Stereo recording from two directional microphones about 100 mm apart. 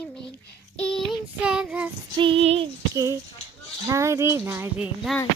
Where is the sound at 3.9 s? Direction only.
30° right (ahead or behind).